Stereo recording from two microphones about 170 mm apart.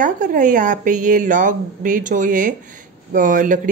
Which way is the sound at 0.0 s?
50° right (ahead or behind).